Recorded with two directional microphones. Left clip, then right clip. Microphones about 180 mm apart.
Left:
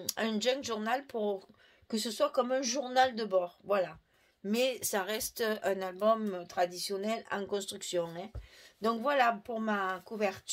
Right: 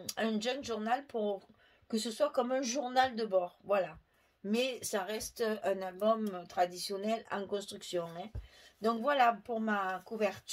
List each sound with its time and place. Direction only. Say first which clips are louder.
0.0 s speech: left 3 dB; 40° left (ahead or behind)